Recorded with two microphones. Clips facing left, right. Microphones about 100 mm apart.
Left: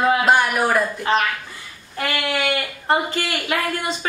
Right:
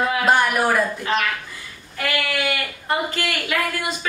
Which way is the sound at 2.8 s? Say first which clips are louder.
Left 3 dB; 30° left (ahead or behind).